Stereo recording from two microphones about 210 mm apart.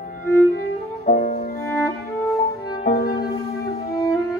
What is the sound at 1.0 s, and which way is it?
Music, 30° left (ahead or behind).